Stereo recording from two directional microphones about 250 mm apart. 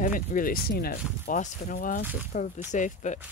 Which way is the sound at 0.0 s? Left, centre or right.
Left.